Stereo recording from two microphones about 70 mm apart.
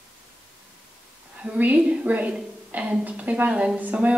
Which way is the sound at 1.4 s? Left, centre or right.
Right.